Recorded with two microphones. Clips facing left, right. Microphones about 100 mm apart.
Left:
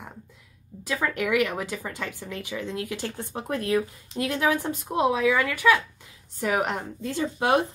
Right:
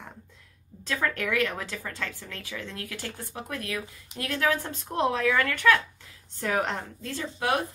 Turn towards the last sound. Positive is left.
turn(degrees=25)  # may be behind; listen again after turning